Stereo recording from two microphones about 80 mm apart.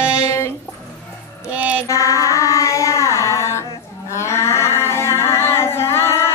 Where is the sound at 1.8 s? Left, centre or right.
Left.